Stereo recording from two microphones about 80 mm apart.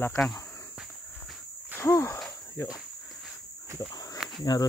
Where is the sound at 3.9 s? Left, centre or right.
Left.